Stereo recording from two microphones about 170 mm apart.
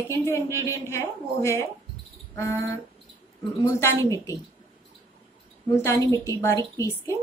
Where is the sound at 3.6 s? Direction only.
20° left (ahead or behind).